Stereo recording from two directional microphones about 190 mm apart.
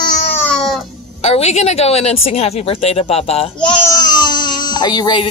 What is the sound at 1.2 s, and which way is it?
A woman's voice, 35° left (ahead or behind).